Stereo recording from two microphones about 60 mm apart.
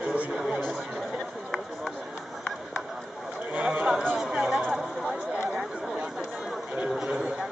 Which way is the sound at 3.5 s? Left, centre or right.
Right.